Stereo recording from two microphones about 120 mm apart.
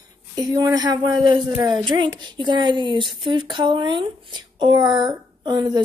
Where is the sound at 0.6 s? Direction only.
35° right (ahead or behind).